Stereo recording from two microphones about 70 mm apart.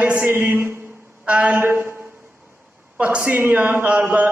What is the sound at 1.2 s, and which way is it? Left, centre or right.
A man's voice, centre.